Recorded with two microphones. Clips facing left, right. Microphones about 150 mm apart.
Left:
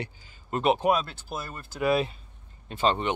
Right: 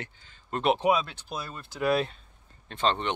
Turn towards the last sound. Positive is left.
turn(degrees=10)  # may be behind; listen again after turning